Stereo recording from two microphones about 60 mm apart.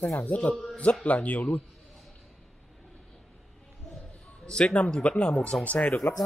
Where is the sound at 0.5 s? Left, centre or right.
Centre.